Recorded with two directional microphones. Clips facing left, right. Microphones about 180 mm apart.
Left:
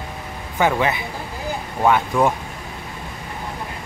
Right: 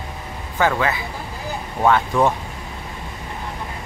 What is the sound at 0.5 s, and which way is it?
Speech, 15° left (ahead or behind).